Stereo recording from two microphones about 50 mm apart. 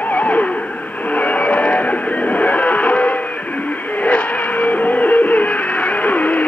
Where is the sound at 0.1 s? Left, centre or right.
Left.